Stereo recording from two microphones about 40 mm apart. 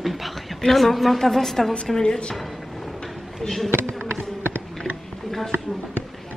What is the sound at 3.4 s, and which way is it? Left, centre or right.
Speech, centre.